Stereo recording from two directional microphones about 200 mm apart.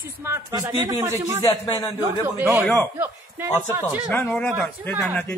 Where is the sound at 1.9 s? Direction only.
10° right (ahead or behind).